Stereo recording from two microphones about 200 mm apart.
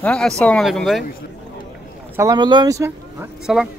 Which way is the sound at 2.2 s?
20° right (ahead or behind).